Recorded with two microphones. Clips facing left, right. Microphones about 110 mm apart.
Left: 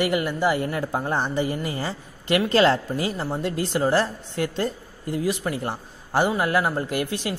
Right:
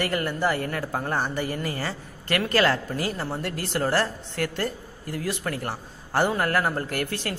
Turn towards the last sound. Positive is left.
turn(degrees=15)  # may be behind; listen again after turning